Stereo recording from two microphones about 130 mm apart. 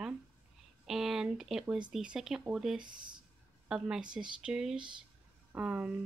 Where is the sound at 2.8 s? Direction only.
35° right (ahead or behind).